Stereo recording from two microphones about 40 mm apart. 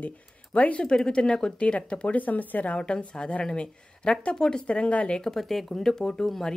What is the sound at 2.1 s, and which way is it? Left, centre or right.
Speech, left.